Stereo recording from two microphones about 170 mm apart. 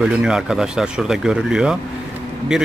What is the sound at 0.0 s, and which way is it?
Speech, 5° right (ahead or behind).